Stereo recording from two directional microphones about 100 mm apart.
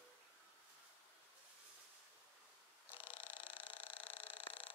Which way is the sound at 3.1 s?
60° left (ahead or behind).